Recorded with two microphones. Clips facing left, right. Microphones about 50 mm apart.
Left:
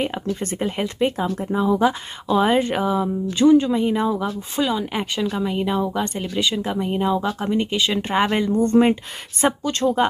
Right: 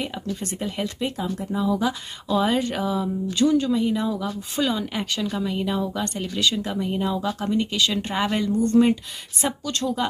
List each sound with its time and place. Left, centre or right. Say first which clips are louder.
0.0 s speech: left 5 dB; left
4.6 s speech: left 2 dB; centre
4.9 s speech: left 3 dB; left